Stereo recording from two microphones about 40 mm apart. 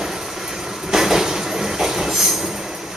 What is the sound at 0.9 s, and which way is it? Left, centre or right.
Train, centre.